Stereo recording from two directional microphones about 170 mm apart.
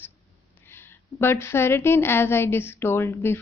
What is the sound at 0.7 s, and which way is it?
A woman's voice, 15° left (ahead or behind).